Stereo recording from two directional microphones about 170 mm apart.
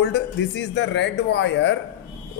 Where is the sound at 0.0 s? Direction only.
90° left.